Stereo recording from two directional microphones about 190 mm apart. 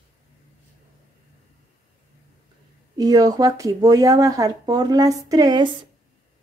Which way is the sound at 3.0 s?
20° right (ahead or behind).